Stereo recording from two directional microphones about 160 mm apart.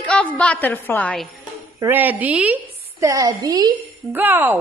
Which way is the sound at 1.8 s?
10° right (ahead or behind).